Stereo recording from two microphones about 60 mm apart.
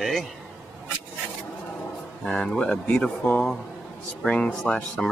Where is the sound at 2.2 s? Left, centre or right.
Centre.